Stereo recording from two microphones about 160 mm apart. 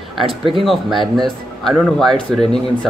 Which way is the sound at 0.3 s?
35° right (ahead or behind).